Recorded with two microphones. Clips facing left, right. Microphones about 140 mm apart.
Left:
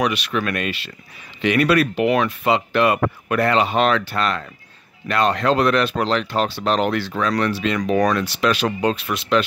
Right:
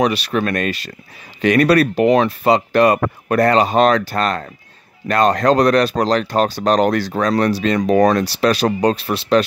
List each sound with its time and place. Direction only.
0.0 s speech: 35° right (ahead or behind)